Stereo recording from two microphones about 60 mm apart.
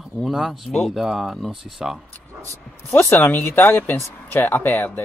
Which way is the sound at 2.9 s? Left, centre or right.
Left.